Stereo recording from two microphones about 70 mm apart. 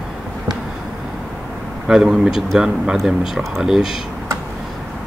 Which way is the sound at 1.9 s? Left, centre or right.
Centre.